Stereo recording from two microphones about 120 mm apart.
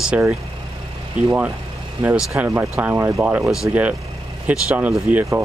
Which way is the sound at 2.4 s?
15° right (ahead or behind).